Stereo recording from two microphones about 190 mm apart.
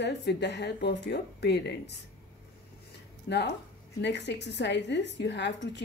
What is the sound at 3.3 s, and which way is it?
A woman's voice, 60° left (ahead or behind).